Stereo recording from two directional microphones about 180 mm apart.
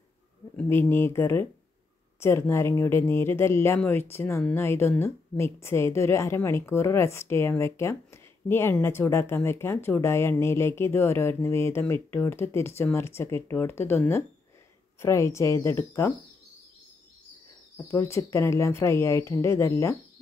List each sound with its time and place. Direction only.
0.6 s speech: 10° left (ahead or behind)
17.7 s speech: 15° left (ahead or behind)